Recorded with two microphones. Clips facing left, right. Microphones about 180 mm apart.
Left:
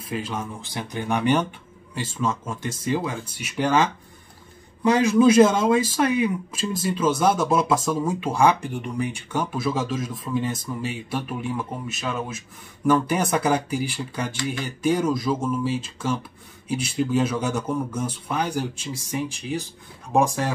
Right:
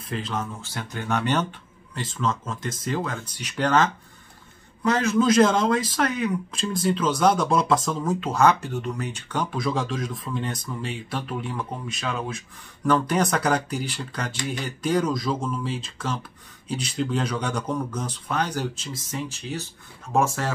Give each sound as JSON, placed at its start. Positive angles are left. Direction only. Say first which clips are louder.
{"t": 0.1, "sound": "speech", "louder": "left 1 dB", "side_deg": 10}